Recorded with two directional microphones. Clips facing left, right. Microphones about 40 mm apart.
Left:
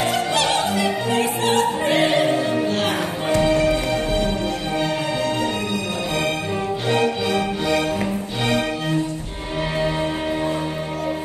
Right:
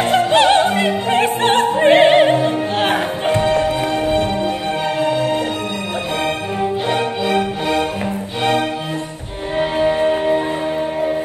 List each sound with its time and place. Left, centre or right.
0.0 s opera: right
7.0 s music: right
9.6 s music: right